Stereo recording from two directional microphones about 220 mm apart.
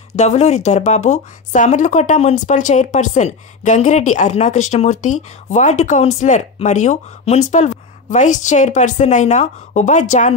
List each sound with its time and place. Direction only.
0.1 s speech: 30° left (ahead or behind)